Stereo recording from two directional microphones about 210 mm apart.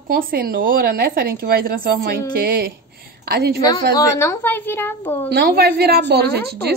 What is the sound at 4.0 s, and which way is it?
A woman's voice, 15° left (ahead or behind).